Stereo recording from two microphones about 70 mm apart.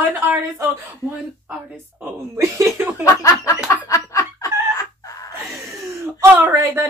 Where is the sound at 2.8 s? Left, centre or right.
Right.